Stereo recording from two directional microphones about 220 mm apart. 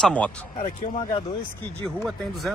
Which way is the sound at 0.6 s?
25° left (ahead or behind).